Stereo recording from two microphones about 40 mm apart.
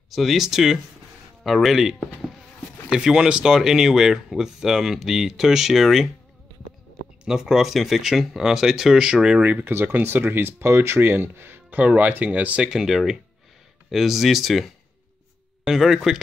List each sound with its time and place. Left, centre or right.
0.1 s speech: centre
7.2 s speech: centre
7.6 s speech: centre
9.0 s speech: right
9.4 s speech: right
10.2 s speech: right
12.0 s speech: right
12.6 s speech: centre